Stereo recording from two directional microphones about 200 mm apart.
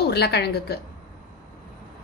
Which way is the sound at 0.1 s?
55° left (ahead or behind).